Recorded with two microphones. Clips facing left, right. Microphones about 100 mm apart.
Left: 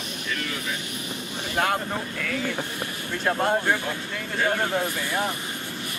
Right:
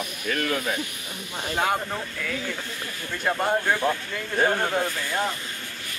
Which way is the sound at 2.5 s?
20° left (ahead or behind).